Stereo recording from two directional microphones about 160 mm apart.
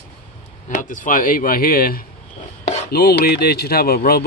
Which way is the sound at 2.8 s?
75° left (ahead or behind).